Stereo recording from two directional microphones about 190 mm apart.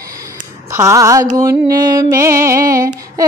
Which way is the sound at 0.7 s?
15° right (ahead or behind).